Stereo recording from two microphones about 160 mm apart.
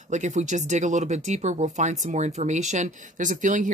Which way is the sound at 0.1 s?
45° right (ahead or behind).